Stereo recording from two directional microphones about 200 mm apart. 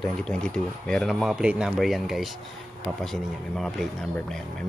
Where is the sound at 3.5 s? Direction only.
Centre (ahead or behind).